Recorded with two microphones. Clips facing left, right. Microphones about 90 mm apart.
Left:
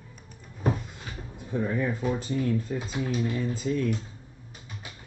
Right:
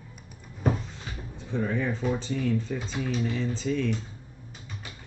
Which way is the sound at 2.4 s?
10° left (ahead or behind).